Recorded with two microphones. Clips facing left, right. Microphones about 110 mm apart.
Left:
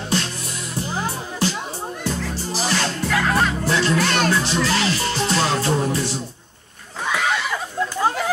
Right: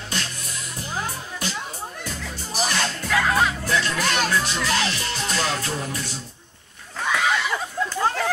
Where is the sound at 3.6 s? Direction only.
30° left (ahead or behind).